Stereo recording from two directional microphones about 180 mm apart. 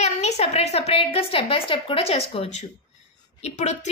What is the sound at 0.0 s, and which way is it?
A woman's voice, 35° left (ahead or behind).